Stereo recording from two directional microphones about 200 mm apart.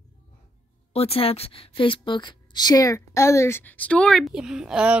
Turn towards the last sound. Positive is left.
turn(degrees=-5)  # may be behind; listen again after turning